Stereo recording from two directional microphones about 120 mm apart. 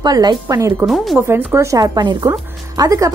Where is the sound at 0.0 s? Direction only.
35° right (ahead or behind).